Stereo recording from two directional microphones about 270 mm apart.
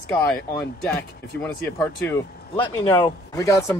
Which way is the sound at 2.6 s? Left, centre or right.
Centre.